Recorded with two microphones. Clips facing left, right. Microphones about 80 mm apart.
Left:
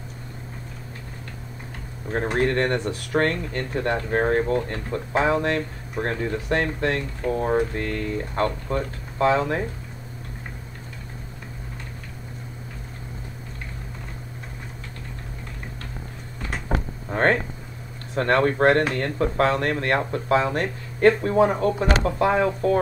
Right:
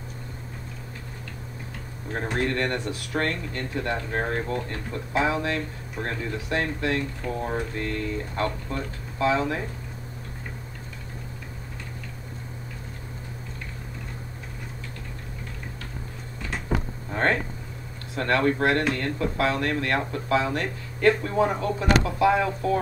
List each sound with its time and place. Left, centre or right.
2.3 s speech: left
16.6 s a sound: left
18.1 s speech: left